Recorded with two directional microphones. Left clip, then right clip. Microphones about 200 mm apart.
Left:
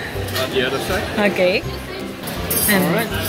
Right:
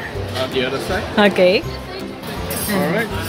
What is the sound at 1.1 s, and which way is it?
Speech, 20° right (ahead or behind).